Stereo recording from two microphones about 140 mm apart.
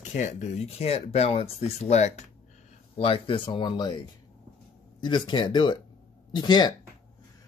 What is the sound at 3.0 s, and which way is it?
Speech, 40° left (ahead or behind).